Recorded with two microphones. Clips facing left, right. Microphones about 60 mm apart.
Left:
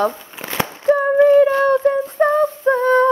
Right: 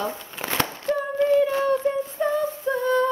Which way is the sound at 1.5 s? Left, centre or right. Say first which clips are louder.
Left 7 dB; left.